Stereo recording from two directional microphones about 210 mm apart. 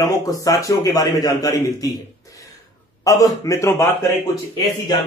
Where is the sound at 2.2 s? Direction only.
15° left (ahead or behind).